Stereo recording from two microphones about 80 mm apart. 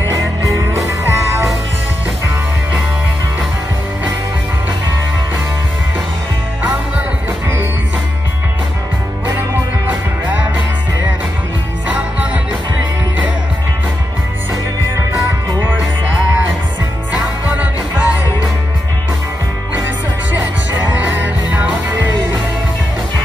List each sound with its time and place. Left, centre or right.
0.8 s music: right
9.8 s music: right
17.1 s music: centre
20.9 s music: right